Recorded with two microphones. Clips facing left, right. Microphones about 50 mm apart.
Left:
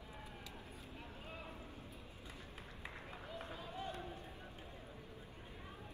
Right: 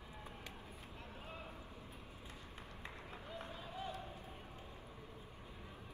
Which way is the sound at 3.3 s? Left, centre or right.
Left.